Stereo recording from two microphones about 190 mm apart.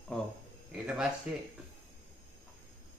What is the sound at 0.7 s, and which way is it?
Speech, centre (ahead or behind).